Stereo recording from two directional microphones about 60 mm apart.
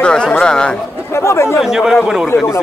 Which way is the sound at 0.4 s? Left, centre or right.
Centre.